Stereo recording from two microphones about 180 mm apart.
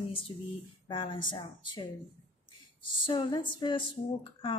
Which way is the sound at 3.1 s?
25° left (ahead or behind).